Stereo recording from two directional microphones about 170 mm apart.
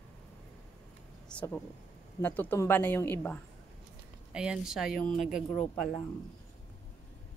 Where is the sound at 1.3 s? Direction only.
10° left (ahead or behind).